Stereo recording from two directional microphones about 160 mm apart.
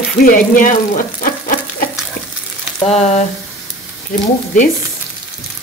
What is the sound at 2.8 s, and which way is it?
Speech, 45° left (ahead or behind).